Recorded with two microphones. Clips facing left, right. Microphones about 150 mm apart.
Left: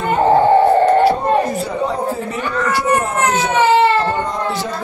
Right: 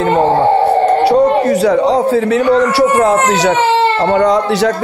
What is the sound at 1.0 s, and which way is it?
A man's voice, 90° right.